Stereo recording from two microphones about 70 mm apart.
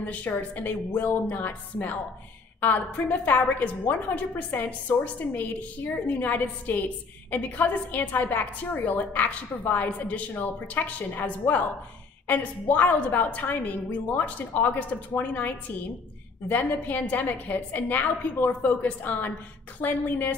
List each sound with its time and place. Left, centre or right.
0.0 s a woman's voice: left